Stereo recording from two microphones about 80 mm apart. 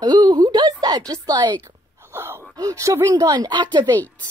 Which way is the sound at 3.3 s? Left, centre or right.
Right.